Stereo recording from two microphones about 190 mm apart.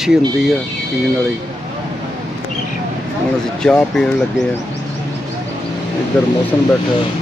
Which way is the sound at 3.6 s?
5° left (ahead or behind).